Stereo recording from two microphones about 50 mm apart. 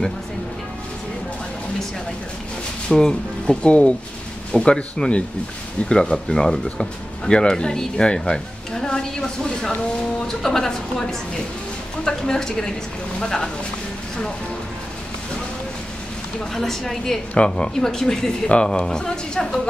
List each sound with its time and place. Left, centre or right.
2.9 s speech: centre
16.5 s speech: centre
17.3 s speech: centre